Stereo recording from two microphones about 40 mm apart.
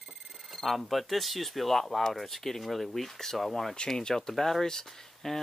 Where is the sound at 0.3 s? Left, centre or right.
Centre.